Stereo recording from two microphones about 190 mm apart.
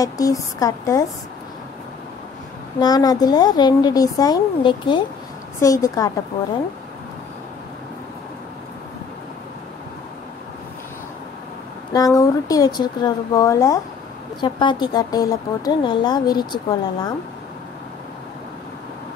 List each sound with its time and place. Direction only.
0.0 s speech: 20° left (ahead or behind)
2.8 s speech: 20° left (ahead or behind)
11.9 s speech: 20° left (ahead or behind)